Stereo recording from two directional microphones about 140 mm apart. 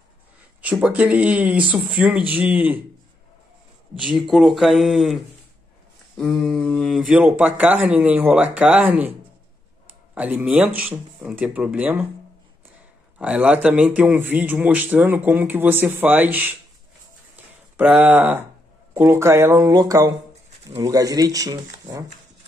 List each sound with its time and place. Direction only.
0.6 s speech: 10° right (ahead or behind)
4.0 s speech: centre (ahead or behind)
7.2 s speech: 10° right (ahead or behind)
10.1 s speech: 10° right (ahead or behind)
13.2 s speech: 10° right (ahead or behind)
17.7 s speech: 10° right (ahead or behind)